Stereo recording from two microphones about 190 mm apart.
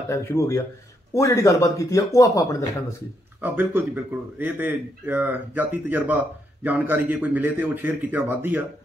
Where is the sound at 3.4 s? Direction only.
10° right (ahead or behind).